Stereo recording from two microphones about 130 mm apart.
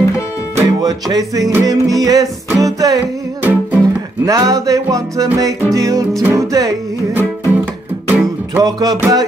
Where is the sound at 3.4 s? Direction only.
10° right (ahead or behind).